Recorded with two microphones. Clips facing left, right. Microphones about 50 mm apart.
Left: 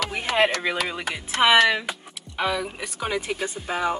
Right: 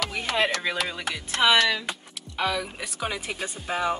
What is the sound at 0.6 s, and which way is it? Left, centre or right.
A woman's voice, centre.